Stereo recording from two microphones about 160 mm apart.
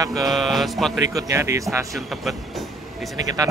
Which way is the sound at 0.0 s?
25° right (ahead or behind).